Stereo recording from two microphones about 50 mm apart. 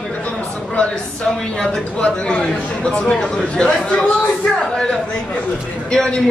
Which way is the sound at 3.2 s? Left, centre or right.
Centre.